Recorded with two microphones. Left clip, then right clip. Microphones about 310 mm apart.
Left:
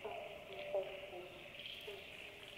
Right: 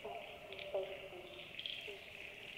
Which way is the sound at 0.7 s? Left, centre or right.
Right.